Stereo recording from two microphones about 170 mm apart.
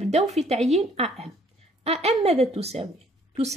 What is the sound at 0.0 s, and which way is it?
A woman's voice, 40° right (ahead or behind).